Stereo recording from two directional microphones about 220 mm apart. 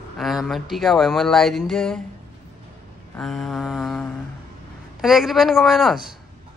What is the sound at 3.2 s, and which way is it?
Speech, centre (ahead or behind).